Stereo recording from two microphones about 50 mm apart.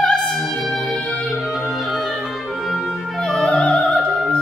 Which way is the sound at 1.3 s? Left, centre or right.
Centre.